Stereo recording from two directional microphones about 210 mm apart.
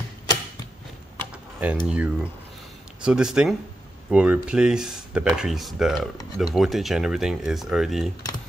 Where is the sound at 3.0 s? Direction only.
5° right (ahead or behind).